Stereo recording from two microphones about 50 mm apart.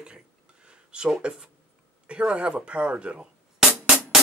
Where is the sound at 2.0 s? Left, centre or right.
Right.